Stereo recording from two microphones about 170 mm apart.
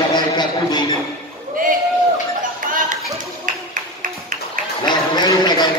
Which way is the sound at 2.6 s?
50° right (ahead or behind).